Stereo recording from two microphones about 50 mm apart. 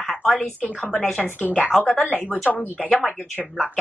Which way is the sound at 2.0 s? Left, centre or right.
Left.